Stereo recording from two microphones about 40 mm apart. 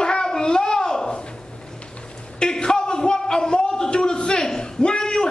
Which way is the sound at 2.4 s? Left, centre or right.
Centre.